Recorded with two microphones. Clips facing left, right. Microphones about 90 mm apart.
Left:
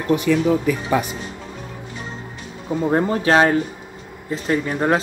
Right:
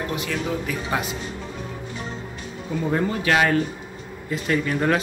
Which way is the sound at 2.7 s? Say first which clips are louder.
Left 5 dB; 35° left (ahead or behind).